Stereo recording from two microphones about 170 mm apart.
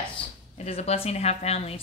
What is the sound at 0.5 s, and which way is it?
A woman's voice, 40° left (ahead or behind).